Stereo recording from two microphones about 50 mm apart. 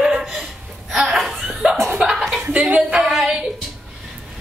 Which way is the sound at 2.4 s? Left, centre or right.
Right.